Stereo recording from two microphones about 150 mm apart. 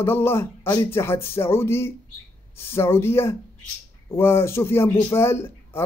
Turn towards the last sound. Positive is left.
turn(degrees=15)  # may be behind; listen again after turning